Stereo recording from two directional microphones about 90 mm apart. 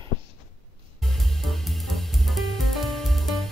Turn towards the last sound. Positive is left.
turn(degrees=0)  # may be behind; listen again after turning